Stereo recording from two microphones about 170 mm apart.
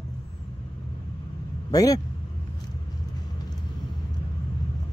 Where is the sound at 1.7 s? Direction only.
20° left (ahead or behind).